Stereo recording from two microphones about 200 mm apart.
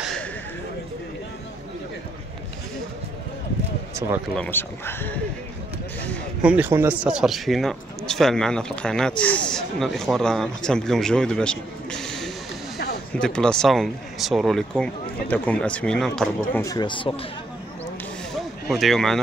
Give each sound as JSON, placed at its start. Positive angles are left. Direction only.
{"t": 4.4, "sound": "speech", "side_deg": 10}
{"t": 6.4, "sound": "speech", "side_deg": -10}
{"t": 16.5, "sound": "speech", "side_deg": 20}
{"t": 18.3, "sound": "a sound", "side_deg": 0}